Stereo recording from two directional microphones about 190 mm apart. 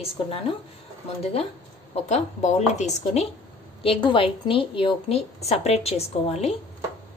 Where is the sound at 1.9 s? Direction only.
35° left (ahead or behind).